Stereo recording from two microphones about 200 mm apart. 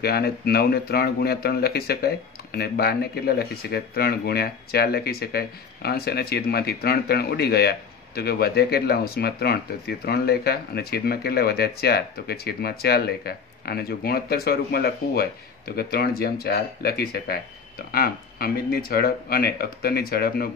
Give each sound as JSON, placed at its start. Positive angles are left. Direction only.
{"t": 0.0, "sound": "speech", "side_deg": 50}